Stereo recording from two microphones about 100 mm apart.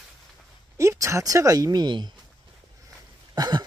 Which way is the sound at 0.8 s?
30° right (ahead or behind).